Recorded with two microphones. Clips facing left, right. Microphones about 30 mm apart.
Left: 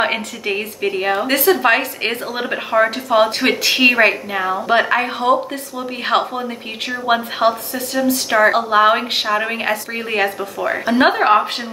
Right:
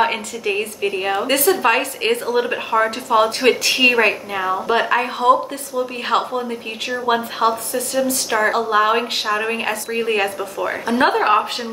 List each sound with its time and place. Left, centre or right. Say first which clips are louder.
0.0 s a woman's voice: even; centre